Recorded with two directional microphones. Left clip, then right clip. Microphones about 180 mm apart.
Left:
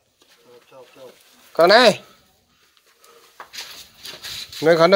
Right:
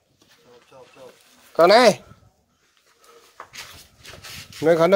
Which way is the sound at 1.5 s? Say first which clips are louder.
Left 1 dB; 25° right (ahead or behind).